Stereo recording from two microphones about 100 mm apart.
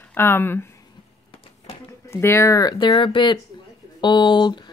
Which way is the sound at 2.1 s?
25° left (ahead or behind).